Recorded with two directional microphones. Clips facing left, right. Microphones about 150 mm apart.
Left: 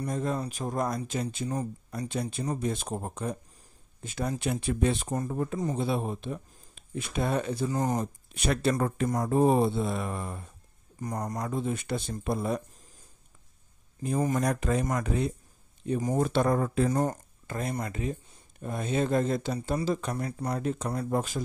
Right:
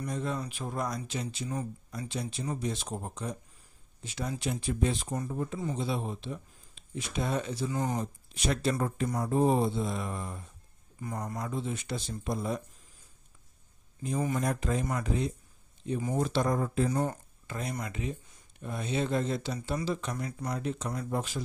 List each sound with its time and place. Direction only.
0.0 s speech: 45° left (ahead or behind)
7.7 s speech: 40° left (ahead or behind)
8.0 s speech: 60° left (ahead or behind)
9.1 s speech: 45° left (ahead or behind)
9.4 s speech: 65° left (ahead or behind)
11.0 s speech: 40° left (ahead or behind); by 12.6 s 60° left (ahead or behind)
14.0 s speech: 45° left (ahead or behind)
14.4 s speech: 70° left (ahead or behind)
16.0 s speech: 45° left (ahead or behind); by 16.9 s 70° left (ahead or behind)
16.9 s speech: 45° left (ahead or behind)